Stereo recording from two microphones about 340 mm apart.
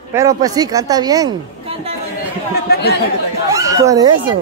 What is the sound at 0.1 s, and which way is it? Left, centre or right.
Speech, centre.